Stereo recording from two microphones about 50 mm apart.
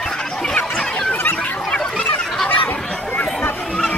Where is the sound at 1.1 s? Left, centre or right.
Left.